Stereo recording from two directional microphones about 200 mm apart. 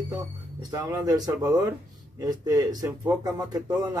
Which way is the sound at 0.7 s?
20° right (ahead or behind).